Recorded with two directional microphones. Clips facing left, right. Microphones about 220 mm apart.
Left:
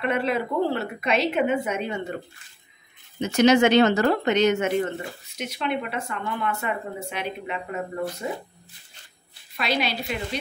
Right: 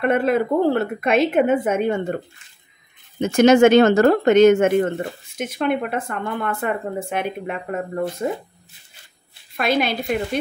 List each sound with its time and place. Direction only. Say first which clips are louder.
0.0 s speech: right 6 dB; 50° right (ahead or behind)
3.2 s speech: right 5 dB; 50° right (ahead or behind)
9.6 s speech: right 6 dB; 50° right (ahead or behind)